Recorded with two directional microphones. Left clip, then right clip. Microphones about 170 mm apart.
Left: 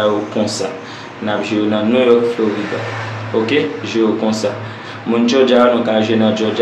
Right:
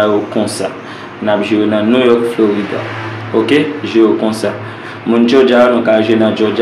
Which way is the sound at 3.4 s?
10° right (ahead or behind).